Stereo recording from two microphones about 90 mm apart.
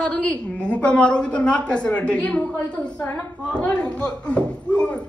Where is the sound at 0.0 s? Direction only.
15° left (ahead or behind).